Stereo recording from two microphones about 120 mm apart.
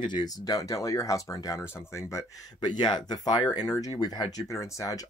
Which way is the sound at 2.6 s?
35° left (ahead or behind).